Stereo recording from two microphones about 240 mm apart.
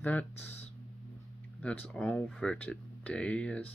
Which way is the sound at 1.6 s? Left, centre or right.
Centre.